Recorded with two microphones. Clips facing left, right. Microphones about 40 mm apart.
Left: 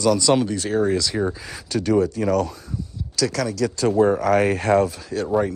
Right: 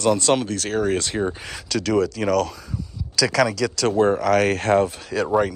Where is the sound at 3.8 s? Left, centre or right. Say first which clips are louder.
Left 1 dB; right.